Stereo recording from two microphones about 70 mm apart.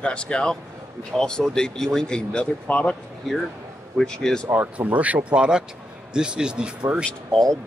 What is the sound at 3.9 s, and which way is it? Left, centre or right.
Speech, centre.